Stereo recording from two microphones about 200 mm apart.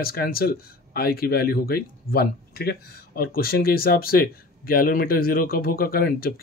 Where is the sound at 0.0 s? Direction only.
50° left (ahead or behind).